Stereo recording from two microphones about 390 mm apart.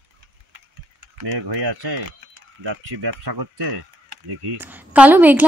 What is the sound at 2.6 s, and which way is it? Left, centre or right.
Speech, right.